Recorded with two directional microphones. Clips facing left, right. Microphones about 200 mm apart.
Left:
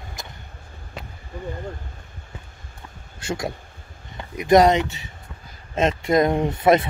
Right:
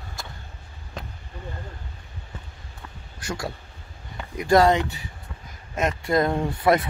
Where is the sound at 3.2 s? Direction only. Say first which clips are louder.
Left 4 dB; 25° left (ahead or behind).